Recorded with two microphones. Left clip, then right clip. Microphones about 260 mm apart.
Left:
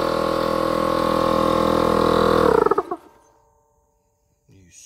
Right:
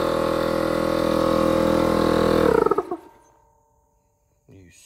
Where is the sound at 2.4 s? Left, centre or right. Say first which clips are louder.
Left 2 dB; left.